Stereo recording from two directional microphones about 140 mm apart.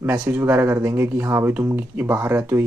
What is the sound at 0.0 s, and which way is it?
Speech, 10° right (ahead or behind).